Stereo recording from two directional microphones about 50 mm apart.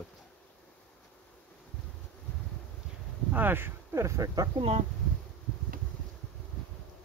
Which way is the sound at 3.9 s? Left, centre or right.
Right.